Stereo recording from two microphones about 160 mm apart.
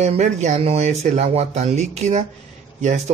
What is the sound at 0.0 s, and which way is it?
Speech, 45° right (ahead or behind).